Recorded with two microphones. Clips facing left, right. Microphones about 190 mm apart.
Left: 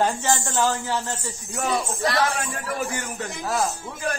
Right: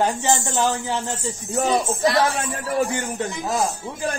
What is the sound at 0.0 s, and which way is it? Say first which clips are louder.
A man's voice: right 2 dB; 20° right (ahead or behind).